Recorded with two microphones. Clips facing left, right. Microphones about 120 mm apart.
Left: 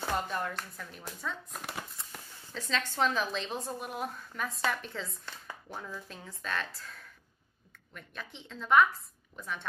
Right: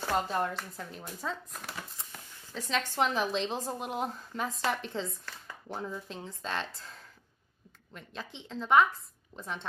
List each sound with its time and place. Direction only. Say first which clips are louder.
0.3 s speech: right 4 dB; 30° right (ahead or behind)
2.5 s speech: right 2 dB; 20° right (ahead or behind)